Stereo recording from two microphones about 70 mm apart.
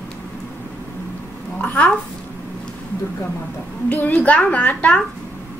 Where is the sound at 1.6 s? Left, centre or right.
Left.